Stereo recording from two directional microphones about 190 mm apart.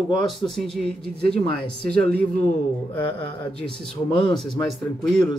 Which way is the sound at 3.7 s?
25° left (ahead or behind).